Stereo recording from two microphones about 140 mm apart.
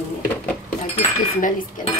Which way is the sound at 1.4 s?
70° left (ahead or behind).